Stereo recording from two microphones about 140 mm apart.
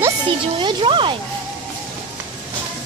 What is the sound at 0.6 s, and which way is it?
Speech, 35° right (ahead or behind).